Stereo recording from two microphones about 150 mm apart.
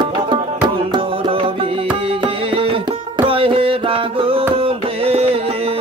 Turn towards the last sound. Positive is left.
turn(degrees=-40)  # may be behind; listen again after turning